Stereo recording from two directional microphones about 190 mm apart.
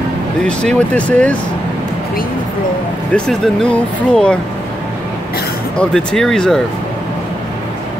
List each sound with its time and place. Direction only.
0.5 s speech: 5° left (ahead or behind)
3.1 s speech: 5° left (ahead or behind)
5.8 s speech: 5° left (ahead or behind)